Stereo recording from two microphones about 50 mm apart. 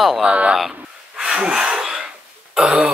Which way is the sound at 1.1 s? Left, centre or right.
Centre.